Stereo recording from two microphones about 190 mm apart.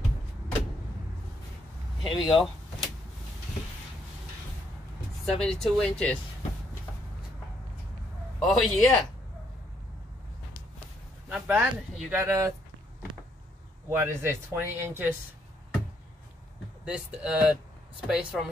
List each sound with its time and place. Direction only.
2.0 s speech: 25° left (ahead or behind)
2.3 s door: centre (ahead or behind)
5.2 s speech: 5° left (ahead or behind)
8.5 s speech: centre (ahead or behind)
11.3 s speech: 10° right (ahead or behind)
13.8 s speech: 15° right (ahead or behind)
16.8 s speech: 5° right (ahead or behind)